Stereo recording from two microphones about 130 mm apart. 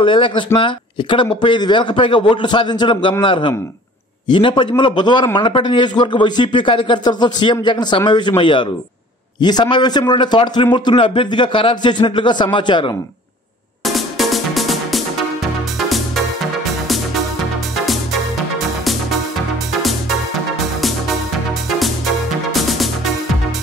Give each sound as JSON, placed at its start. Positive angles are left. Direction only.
{"t": 0.0, "sound": "a man's voice", "side_deg": 40}
{"t": 13.8, "sound": "music", "side_deg": 0}
{"t": 19.8, "sound": "music", "side_deg": 0}
{"t": 21.6, "sound": "music", "side_deg": 0}